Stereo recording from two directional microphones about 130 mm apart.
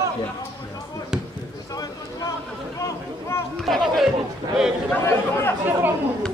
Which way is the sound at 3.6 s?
Centre (ahead or behind).